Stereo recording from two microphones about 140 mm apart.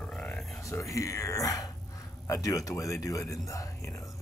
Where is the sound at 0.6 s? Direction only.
20° left (ahead or behind).